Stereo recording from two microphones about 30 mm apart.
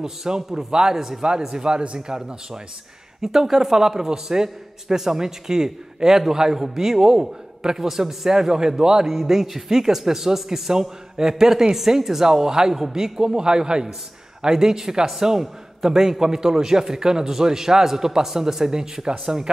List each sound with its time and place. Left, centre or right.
0.0 s a man's voice: centre
0.9 s a man's voice: centre
1.6 s a man's voice: right
9.0 s a man's voice: centre